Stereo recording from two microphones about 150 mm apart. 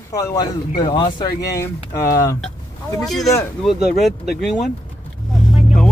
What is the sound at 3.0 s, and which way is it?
Speech, centre (ahead or behind).